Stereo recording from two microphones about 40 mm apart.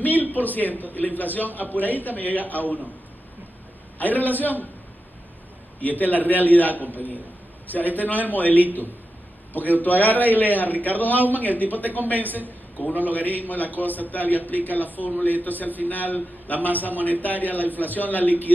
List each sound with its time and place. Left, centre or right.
0.0 s a man's voice: left
4.0 s a man's voice: left
5.8 s a man's voice: left